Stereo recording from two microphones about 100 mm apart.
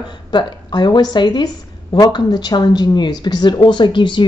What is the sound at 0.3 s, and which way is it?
A woman's voice, 50° left (ahead or behind).